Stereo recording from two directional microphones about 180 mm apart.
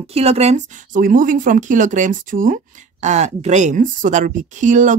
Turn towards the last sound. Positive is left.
turn(degrees=-45)  # may be behind; listen again after turning